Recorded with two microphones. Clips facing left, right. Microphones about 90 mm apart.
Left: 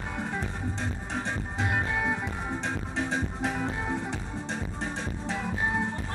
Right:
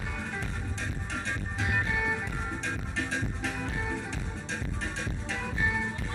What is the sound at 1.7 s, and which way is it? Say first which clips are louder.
Music: left 1 dB; 35° left (ahead or behind).